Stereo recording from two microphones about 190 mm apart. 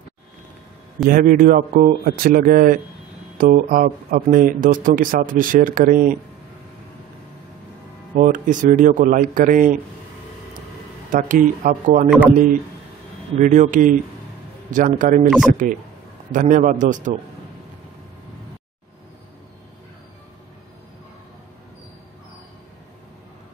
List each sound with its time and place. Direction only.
1.0 s speech: 45° right (ahead or behind)
8.2 s speech: 45° right (ahead or behind)
11.1 s speech: 45° right (ahead or behind)
13.4 s speech: 40° right (ahead or behind)
15.2 s speech: 5° right (ahead or behind)
15.5 s speech: 45° right (ahead or behind)